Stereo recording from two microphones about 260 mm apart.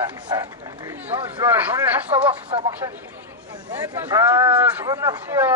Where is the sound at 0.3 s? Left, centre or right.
Centre.